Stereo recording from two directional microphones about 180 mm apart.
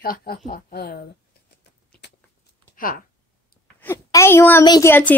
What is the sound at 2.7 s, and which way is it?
Speech, 50° left (ahead or behind).